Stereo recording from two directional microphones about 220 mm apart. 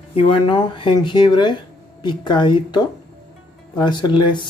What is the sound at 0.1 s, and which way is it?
A woman's voice, 25° left (ahead or behind).